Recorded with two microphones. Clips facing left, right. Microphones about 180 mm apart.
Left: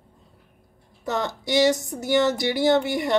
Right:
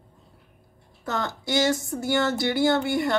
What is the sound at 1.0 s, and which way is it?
A woman's voice, 20° left (ahead or behind).